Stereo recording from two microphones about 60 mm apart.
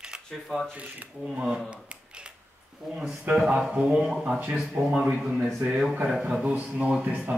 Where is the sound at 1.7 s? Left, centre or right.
Centre.